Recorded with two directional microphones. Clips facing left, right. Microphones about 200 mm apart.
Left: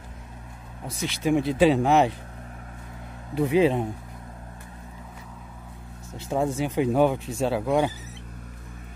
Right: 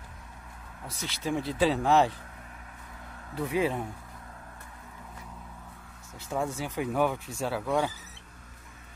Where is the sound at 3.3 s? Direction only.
20° left (ahead or behind).